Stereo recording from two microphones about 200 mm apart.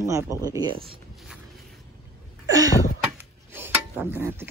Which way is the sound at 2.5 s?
20° right (ahead or behind).